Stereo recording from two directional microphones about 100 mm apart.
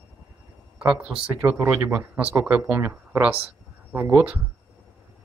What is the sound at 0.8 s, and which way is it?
Speech, 10° right (ahead or behind).